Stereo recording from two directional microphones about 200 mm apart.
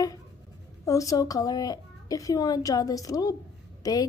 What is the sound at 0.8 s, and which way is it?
A child's voice, 15° left (ahead or behind).